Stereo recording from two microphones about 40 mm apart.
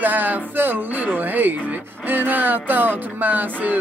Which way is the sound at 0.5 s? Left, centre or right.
Right.